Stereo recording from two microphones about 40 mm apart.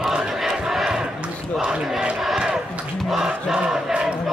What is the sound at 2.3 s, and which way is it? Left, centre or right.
Crowd, centre.